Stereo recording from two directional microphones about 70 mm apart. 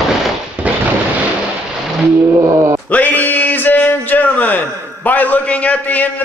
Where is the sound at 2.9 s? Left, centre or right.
Left.